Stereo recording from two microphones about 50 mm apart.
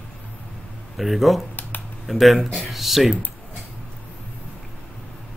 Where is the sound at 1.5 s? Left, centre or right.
Left.